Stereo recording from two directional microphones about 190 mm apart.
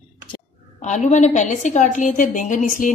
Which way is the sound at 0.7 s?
40° left (ahead or behind).